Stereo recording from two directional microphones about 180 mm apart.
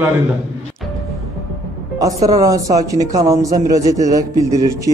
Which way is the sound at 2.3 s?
20° right (ahead or behind).